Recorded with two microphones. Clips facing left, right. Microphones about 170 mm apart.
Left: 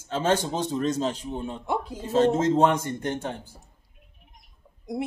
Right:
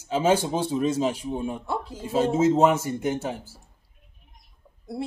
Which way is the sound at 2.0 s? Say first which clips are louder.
Even; 10° right (ahead or behind).